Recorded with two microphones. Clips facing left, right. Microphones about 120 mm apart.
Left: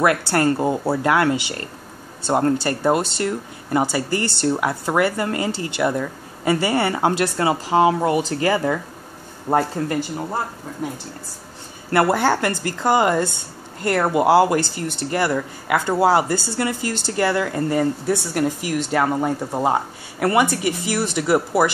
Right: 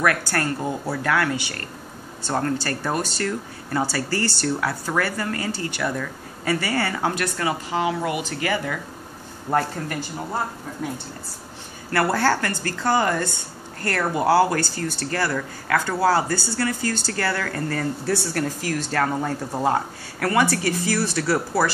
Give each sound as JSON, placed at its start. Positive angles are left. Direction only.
{"t": 0.0, "sound": "speech", "side_deg": 25}
{"t": 11.9, "sound": "speech", "side_deg": 20}